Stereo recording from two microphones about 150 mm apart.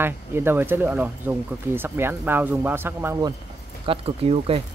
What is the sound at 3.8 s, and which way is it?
Speech, 40° right (ahead or behind).